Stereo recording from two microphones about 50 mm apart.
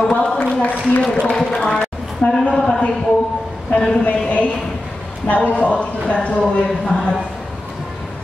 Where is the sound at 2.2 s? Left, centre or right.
Left.